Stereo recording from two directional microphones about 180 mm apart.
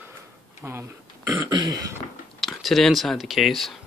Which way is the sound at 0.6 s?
15° right (ahead or behind).